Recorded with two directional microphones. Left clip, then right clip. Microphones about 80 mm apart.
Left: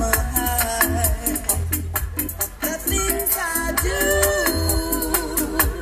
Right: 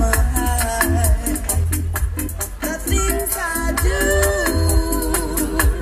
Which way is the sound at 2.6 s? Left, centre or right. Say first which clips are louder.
Right 2 dB; left.